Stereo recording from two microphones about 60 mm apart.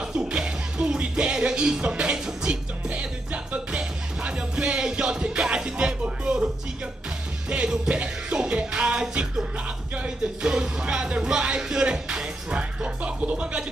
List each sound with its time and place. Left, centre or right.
0.0 s music: centre